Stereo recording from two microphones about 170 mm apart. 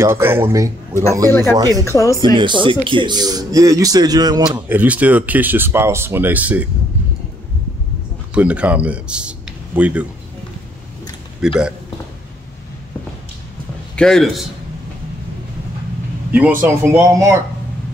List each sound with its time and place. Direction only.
0.0 s a man's voice: 15° right (ahead or behind)
1.9 s speech: 20° left (ahead or behind)
2.6 s a man's voice: 30° right (ahead or behind)
4.5 s speech: 10° right (ahead or behind)
8.4 s speech: 10° right (ahead or behind)
11.4 s a man's voice: 5° right (ahead or behind)
13.9 s a man's voice: 5° left (ahead or behind)
16.3 s a man's voice: 10° right (ahead or behind)